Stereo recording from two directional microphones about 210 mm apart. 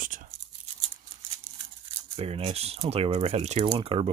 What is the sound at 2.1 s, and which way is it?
Speech, 30° right (ahead or behind).